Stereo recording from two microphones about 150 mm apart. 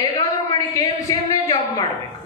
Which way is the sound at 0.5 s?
25° left (ahead or behind).